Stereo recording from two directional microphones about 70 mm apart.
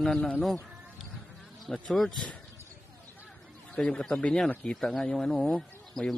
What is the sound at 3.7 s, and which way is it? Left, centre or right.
A man's voice, centre.